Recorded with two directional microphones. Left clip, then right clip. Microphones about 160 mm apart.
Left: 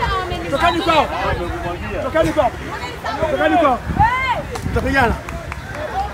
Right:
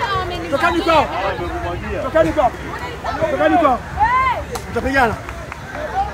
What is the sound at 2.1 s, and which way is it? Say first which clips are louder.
Speech: right 2 dB; 5° left (ahead or behind).